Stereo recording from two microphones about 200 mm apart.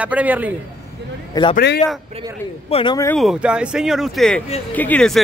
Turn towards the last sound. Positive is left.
turn(degrees=5)  # may be behind; listen again after turning